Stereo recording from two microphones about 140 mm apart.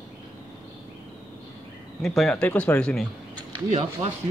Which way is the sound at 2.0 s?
Centre (ahead or behind).